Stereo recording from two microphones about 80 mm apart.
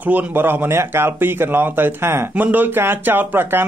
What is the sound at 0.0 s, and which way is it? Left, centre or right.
Speech, right.